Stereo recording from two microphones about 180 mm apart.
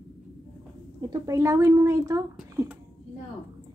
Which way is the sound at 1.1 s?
20° right (ahead or behind).